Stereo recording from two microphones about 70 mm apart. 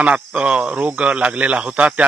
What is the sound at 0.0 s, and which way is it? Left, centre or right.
Speech, centre.